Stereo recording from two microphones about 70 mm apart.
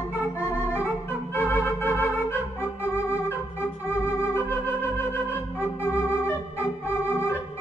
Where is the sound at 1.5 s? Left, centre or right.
Left.